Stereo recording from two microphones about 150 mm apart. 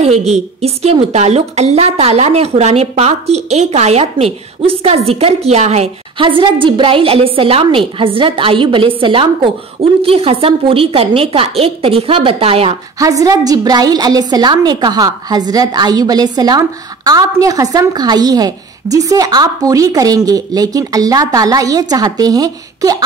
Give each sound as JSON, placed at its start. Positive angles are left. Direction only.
{"t": 0.0, "sound": "a woman's voice", "side_deg": -45}
{"t": 13.0, "sound": "a woman's voice", "side_deg": -20}